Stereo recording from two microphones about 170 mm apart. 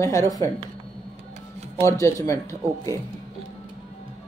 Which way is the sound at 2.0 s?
20° left (ahead or behind).